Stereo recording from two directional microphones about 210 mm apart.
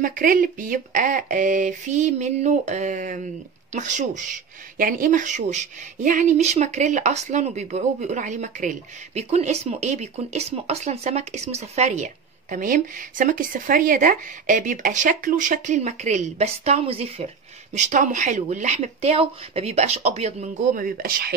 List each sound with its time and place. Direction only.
0.0 s speech: 40° right (ahead or behind)